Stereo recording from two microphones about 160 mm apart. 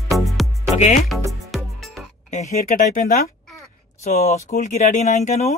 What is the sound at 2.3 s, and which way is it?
Speech, 55° left (ahead or behind).